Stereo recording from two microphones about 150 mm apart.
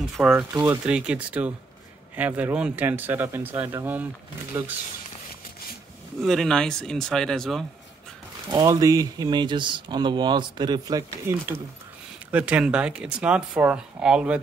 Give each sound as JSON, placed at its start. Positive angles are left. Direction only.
{"t": 0.2, "sound": "speech", "side_deg": -5}
{"t": 6.2, "sound": "speech", "side_deg": 0}
{"t": 8.5, "sound": "speech", "side_deg": -25}